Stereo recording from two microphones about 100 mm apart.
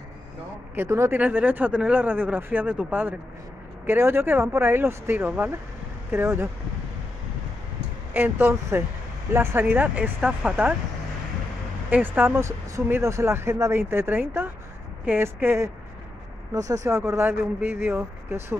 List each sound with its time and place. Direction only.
0.7 s speech: 25° right (ahead or behind)
1.1 s speech: 15° right (ahead or behind)
8.1 s speech: 20° right (ahead or behind)
11.9 s speech: 20° right (ahead or behind)